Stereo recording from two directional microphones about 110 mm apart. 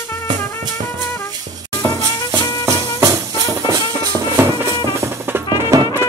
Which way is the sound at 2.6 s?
30° right (ahead or behind).